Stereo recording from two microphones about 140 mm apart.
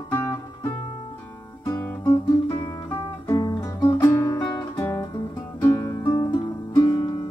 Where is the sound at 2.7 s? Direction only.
20° left (ahead or behind).